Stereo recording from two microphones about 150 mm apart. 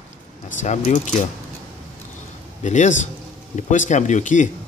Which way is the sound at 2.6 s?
55° left (ahead or behind).